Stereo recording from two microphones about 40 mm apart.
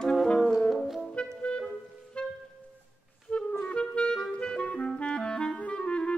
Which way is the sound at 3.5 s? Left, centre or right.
Left.